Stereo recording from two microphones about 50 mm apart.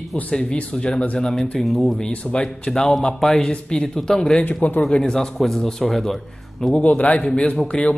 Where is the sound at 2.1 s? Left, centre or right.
Left.